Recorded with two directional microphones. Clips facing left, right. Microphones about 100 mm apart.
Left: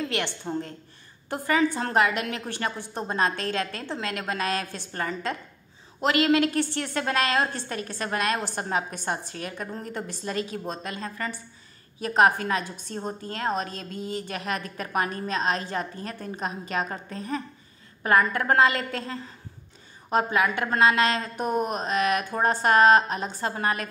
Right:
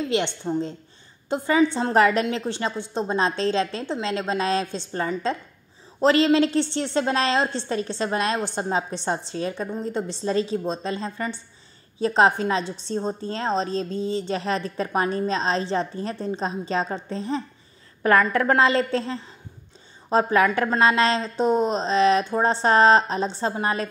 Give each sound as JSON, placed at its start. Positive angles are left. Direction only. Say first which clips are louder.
{"t": 0.1, "sound": "a woman's voice", "louder": "right 5 dB", "side_deg": -20}
{"t": 2.0, "sound": "a woman's voice", "louder": "right 5 dB", "side_deg": -35}
{"t": 2.2, "sound": "a woman's voice", "louder": "right 4 dB", "side_deg": -20}
{"t": 18.6, "sound": "a woman's voice", "louder": "right 3 dB", "side_deg": -30}